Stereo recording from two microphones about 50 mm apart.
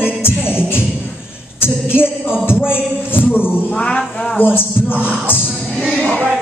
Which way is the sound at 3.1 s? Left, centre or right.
Left.